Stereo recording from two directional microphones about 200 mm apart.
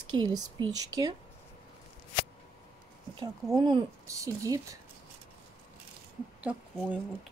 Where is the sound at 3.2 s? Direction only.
20° right (ahead or behind).